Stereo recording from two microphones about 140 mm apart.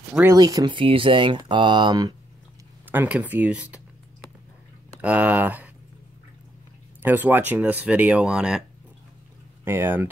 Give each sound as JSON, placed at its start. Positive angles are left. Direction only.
{"t": 0.3, "sound": "speech", "side_deg": -25}
{"t": 0.7, "sound": "speech", "side_deg": -40}
{"t": 2.9, "sound": "speech", "side_deg": -10}
{"t": 5.0, "sound": "speech", "side_deg": -10}
{"t": 7.0, "sound": "speech", "side_deg": -15}
{"t": 9.7, "sound": "speech", "side_deg": -15}